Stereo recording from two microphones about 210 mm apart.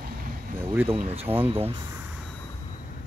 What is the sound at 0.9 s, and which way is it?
Speech, 25° right (ahead or behind).